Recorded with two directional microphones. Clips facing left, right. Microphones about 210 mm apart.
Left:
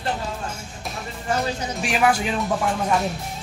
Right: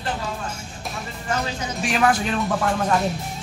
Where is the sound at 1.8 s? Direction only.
10° left (ahead or behind).